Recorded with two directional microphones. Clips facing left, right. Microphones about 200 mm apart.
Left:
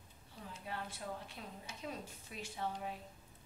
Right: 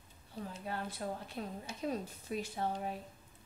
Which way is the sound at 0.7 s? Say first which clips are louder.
Right 4 dB; 40° right (ahead or behind).